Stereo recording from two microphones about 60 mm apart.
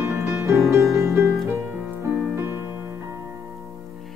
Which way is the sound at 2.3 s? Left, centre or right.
Right.